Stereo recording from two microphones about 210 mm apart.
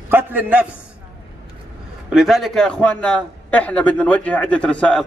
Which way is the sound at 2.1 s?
Centre (ahead or behind).